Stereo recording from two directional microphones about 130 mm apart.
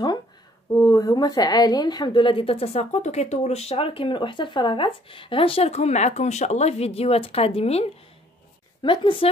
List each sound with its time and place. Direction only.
0.7 s a woman's voice: 30° left (ahead or behind); by 7.8 s 50° left (ahead or behind)
8.8 s a woman's voice: 40° left (ahead or behind)